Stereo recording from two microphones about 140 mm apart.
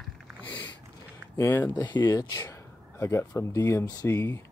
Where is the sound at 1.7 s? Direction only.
30° left (ahead or behind).